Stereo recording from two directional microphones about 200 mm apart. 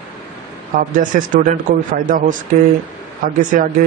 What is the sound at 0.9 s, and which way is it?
A man's voice, 40° right (ahead or behind).